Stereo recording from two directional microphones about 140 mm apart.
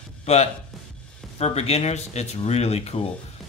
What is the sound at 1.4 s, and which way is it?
Speech, 50° left (ahead or behind).